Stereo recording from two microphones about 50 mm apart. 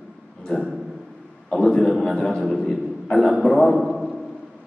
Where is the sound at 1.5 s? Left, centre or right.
Centre.